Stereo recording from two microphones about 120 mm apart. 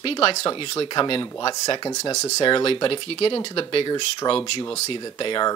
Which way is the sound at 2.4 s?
45° left (ahead or behind).